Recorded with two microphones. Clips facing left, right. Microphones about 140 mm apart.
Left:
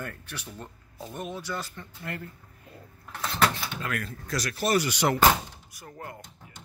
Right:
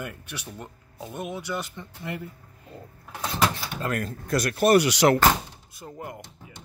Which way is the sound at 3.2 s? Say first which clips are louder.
Right 1 dB; 10° right (ahead or behind).